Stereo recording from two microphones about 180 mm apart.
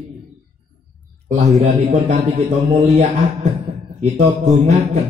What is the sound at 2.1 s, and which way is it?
A man's voice, 30° right (ahead or behind).